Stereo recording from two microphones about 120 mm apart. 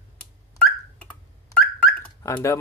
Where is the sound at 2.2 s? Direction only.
25° left (ahead or behind).